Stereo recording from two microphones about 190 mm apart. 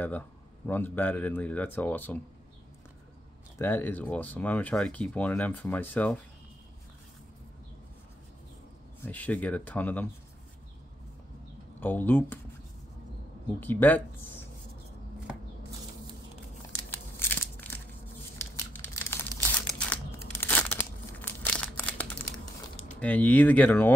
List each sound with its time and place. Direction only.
0.7 s speech: 10° left (ahead or behind)
3.5 s speech: 10° left (ahead or behind)
9.0 s speech: 10° left (ahead or behind)
11.8 s speech: 10° left (ahead or behind)
13.6 s speech: 10° left (ahead or behind)
16.9 s crushing: 10° left (ahead or behind)
18.4 s tearing: 15° left (ahead or behind)
21.2 s a sound: 10° left (ahead or behind)
22.9 s speech: 10° left (ahead or behind)